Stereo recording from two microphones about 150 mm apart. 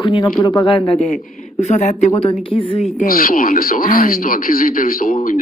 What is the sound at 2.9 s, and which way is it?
Speech, 70° left (ahead or behind).